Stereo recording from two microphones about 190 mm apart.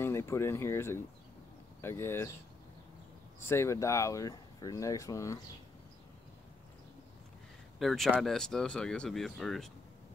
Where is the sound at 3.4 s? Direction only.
15° left (ahead or behind).